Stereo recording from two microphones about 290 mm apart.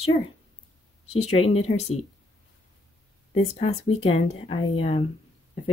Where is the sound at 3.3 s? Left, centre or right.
Left.